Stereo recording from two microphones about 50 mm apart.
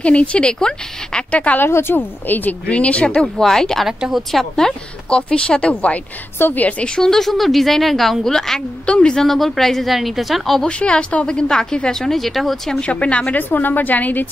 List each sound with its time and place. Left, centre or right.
0.0 s speech: left
1.3 s speech: left
1.7 s speech: left
2.7 s speech: left
3.2 s a woman's voice: centre; by 6.9 s left
7.0 s a woman's voice: centre
8.8 s speech: centre
9.3 s a woman's voice: centre
10.6 s speech: left; by 12.8 s centre
12.8 s speech: left
13.4 s a woman's voice: left